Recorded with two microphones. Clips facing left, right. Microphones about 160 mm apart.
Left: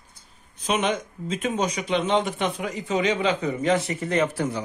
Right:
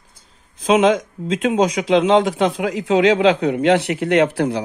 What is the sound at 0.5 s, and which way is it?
Speech, 90° right.